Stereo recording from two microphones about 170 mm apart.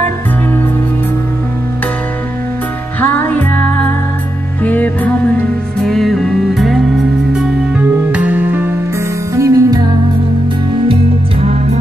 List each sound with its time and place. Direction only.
3.0 s music: 10° left (ahead or behind); by 9.9 s 20° right (ahead or behind)